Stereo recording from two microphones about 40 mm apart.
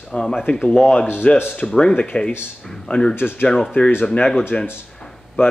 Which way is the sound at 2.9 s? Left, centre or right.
Left.